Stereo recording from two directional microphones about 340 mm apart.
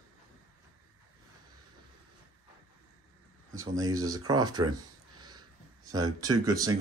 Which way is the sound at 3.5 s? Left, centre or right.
Centre.